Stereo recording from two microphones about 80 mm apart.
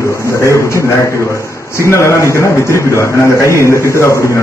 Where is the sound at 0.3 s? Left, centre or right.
Left.